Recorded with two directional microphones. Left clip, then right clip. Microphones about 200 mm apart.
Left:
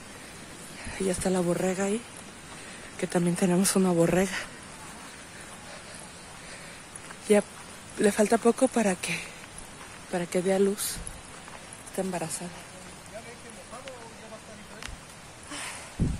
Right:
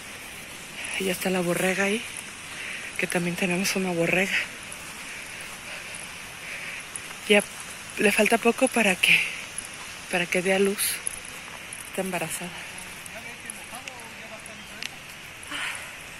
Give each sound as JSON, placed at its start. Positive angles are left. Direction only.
{"t": 0.9, "sound": "speech", "side_deg": 10}
{"t": 1.4, "sound": "speech", "side_deg": 0}
{"t": 3.0, "sound": "speech", "side_deg": 10}
{"t": 3.3, "sound": "speech", "side_deg": 25}
{"t": 8.0, "sound": "speech", "side_deg": 10}
{"t": 12.0, "sound": "speech", "side_deg": -5}